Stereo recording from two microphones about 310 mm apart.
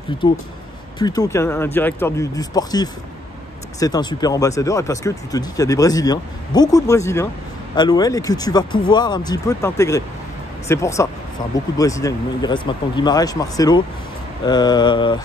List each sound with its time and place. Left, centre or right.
0.2 s speech: centre